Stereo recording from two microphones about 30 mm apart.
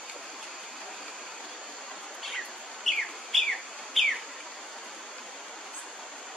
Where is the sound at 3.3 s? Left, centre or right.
Centre.